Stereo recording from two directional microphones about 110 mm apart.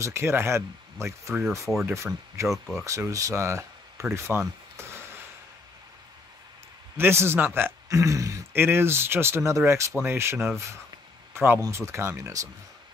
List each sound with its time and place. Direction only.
0.0 s speech: 25° right (ahead or behind)
2.4 s speech: centre (ahead or behind)
2.8 s speech: 30° right (ahead or behind)
7.0 s speech: 20° right (ahead or behind)